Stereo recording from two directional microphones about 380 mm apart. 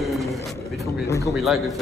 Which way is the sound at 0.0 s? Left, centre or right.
Centre.